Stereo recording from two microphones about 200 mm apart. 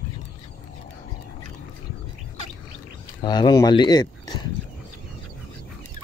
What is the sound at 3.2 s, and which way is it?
Speech, 20° left (ahead or behind).